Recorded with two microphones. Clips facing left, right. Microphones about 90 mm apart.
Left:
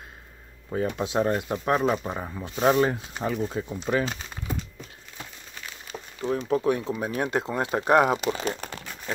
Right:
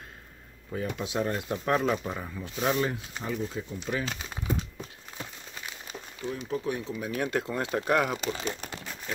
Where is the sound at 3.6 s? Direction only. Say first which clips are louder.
Left 5 dB; 65° left (ahead or behind).